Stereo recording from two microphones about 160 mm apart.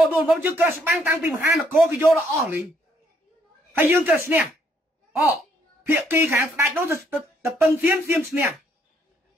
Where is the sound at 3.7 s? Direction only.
15° right (ahead or behind).